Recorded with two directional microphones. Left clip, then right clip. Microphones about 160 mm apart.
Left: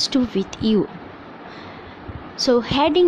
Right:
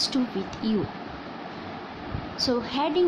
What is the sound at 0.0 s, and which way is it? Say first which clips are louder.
Speech: left 6 dB; 55° left (ahead or behind).